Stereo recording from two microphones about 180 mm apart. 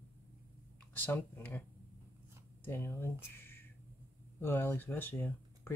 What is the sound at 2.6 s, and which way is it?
Speech, 10° left (ahead or behind).